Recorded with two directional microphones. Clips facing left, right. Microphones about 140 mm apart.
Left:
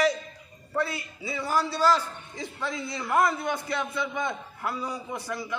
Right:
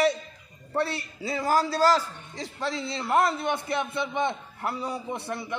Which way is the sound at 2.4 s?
35° right (ahead or behind).